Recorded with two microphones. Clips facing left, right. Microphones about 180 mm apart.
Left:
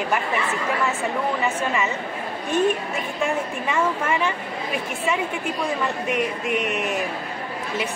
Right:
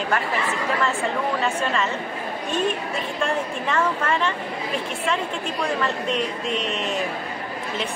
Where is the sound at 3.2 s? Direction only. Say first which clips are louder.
Left 1 dB; 10° left (ahead or behind).